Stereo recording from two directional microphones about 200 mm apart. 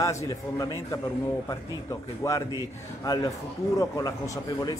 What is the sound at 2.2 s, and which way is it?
A man's voice, 15° left (ahead or behind).